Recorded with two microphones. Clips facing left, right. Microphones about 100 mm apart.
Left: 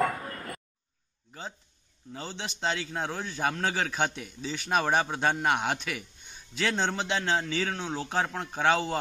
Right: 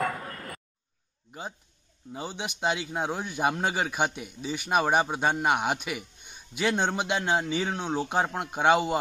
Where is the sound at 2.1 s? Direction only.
15° right (ahead or behind).